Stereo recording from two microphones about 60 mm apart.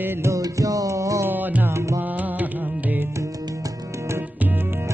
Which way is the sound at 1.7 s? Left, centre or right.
Right.